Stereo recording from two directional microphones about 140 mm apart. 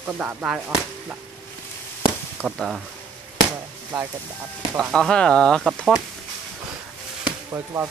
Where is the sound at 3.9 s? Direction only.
5° right (ahead or behind).